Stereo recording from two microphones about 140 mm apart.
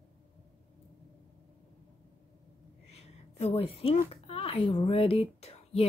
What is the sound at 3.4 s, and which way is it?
Speech, 45° left (ahead or behind).